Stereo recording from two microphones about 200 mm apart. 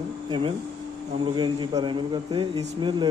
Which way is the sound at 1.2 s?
25° right (ahead or behind).